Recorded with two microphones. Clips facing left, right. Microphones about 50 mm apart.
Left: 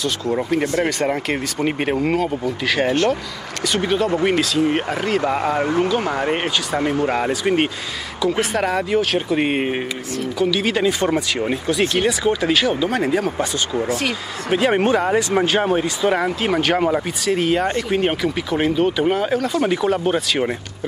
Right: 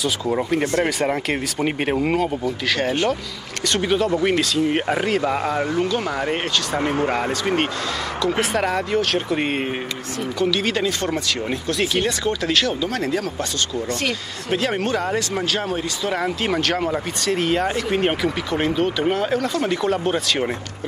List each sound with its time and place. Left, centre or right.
0.0 s speech: centre
2.9 s speech: centre
14.6 s speech: centre
16.2 s speech: centre